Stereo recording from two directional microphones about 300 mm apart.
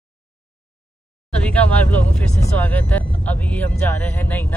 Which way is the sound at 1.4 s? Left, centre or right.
Centre.